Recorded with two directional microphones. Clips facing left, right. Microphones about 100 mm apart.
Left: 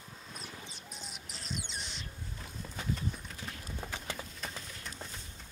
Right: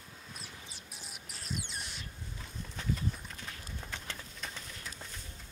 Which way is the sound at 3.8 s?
5° left (ahead or behind).